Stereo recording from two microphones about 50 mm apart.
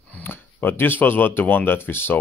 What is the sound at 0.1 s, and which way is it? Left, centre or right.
Speech, left.